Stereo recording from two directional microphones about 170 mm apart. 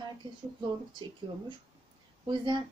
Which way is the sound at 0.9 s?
30° right (ahead or behind).